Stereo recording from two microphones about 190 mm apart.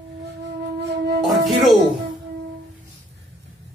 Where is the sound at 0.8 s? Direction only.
60° right (ahead or behind).